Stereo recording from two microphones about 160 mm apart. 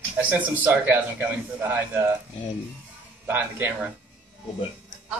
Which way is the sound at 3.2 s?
10° right (ahead or behind).